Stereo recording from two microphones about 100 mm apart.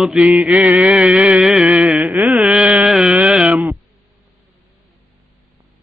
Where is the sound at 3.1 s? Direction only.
10° right (ahead or behind).